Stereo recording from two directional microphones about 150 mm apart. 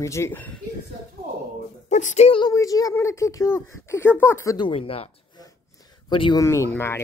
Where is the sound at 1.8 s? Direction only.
55° left (ahead or behind).